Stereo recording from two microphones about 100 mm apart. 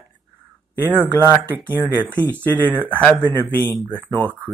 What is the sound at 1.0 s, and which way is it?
Speech, 20° right (ahead or behind).